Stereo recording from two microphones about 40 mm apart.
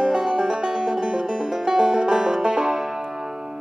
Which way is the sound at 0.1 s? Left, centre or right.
Centre.